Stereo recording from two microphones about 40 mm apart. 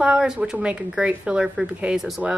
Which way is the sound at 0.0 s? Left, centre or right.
Right.